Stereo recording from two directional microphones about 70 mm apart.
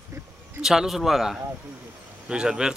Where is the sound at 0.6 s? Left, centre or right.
Centre.